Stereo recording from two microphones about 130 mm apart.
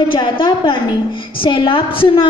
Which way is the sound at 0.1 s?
35° left (ahead or behind).